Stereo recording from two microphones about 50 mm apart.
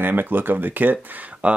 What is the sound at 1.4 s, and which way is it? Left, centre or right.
Speech, right.